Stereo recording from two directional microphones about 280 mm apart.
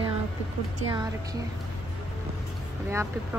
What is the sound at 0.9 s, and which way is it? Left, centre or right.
Speech, centre.